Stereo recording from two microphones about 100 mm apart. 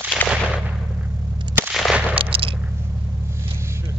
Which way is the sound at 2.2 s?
65° right (ahead or behind).